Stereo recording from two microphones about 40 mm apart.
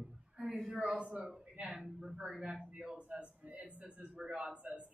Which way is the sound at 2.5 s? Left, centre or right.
Centre.